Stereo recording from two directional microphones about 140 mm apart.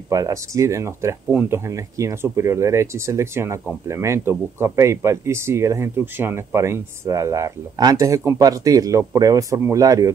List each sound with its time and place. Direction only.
0.1 s speech: 25° right (ahead or behind)